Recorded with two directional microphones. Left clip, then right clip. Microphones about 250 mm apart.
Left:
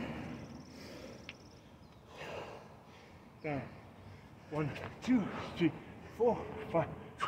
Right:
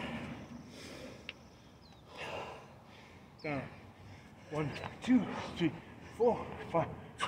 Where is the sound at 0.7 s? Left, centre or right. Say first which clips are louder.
Right 2 dB; centre.